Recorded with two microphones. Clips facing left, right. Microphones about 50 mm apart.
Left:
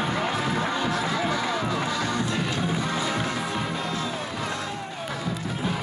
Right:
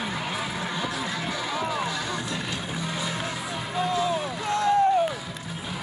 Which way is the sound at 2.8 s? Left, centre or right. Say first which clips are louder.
Left 4 dB; left.